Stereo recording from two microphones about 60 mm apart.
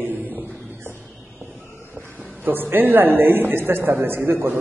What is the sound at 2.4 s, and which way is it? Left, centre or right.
A man's voice, right.